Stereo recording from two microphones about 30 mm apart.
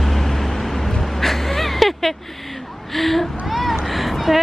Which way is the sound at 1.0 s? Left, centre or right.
Centre.